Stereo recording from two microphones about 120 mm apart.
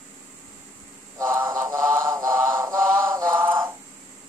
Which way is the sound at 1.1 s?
30° right (ahead or behind).